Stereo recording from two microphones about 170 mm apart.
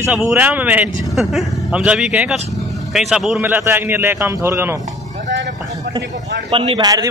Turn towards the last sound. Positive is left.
turn(degrees=-20)  # may be behind; listen again after turning